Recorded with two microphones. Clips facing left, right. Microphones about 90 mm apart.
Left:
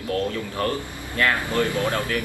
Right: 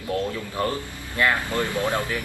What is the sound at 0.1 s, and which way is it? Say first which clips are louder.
Speech: left 1 dB; 20° right (ahead or behind).